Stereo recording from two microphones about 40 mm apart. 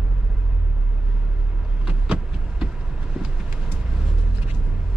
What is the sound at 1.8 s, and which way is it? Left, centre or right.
Vehicle, right.